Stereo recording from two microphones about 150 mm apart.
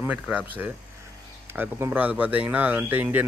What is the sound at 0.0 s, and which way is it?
Speech, 10° right (ahead or behind).